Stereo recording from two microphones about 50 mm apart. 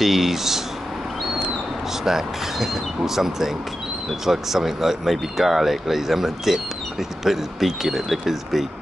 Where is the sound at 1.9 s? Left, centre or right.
Centre.